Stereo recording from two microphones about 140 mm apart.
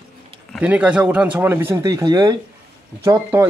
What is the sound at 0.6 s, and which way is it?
Speech, 10° right (ahead or behind).